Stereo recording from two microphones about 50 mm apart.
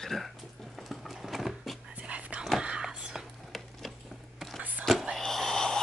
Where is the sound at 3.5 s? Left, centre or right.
Centre.